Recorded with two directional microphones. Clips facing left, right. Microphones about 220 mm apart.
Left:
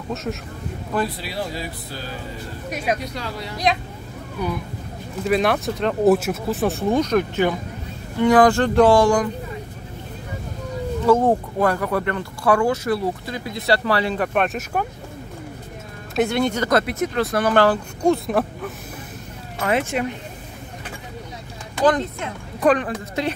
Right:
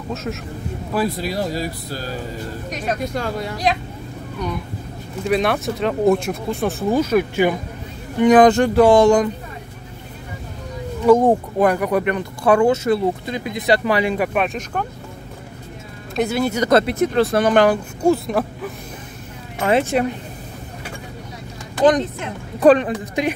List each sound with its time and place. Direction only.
0.1 s speech: centre (ahead or behind)
1.1 s speech: 45° right (ahead or behind)
2.7 s speech: 10° left (ahead or behind)
3.1 s speech: 50° right (ahead or behind)
4.4 s speech: 5° left (ahead or behind); by 9.3 s 20° right (ahead or behind)
11.1 s speech: 15° right (ahead or behind); by 14.9 s 5° left (ahead or behind)
16.2 s speech: centre (ahead or behind)
16.6 s speech: 30° right (ahead or behind)
18.0 s speech: centre (ahead or behind)
19.6 s speech: 30° right (ahead or behind)
22.6 s speech: 35° right (ahead or behind)
23.2 s speech: 15° right (ahead or behind)